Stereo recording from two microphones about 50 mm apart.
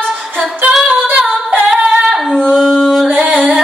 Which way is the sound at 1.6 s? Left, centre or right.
Centre.